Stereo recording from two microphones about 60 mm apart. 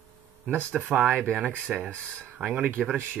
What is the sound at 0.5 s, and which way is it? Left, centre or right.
Speech, right.